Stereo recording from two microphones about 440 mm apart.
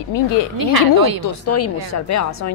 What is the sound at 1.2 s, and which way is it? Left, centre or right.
A woman's voice, left.